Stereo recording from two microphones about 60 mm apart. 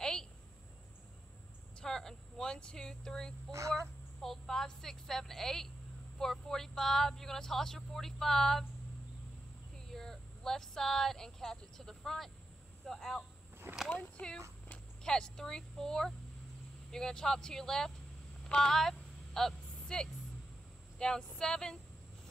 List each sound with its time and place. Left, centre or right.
0.0 s a sound: centre
1.8 s speech: centre
9.9 s speech: centre
13.8 s speech: left
15.0 s speech: centre
18.5 s a sound: centre
21.0 s speech: centre